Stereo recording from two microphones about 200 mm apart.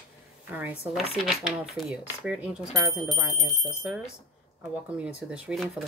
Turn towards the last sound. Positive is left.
turn(degrees=0)  # may be behind; listen again after turning